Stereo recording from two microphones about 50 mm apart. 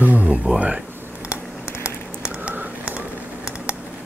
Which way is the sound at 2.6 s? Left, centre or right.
Right.